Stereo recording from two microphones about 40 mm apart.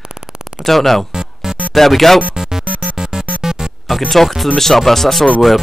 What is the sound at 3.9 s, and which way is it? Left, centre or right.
Speech, centre.